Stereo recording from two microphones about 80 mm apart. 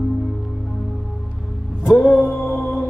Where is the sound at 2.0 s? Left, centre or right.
Centre.